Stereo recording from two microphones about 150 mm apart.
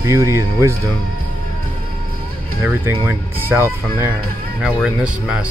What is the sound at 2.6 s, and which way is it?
Speech, 15° right (ahead or behind).